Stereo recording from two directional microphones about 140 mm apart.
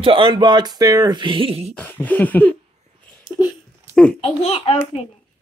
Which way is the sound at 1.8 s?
10° left (ahead or behind).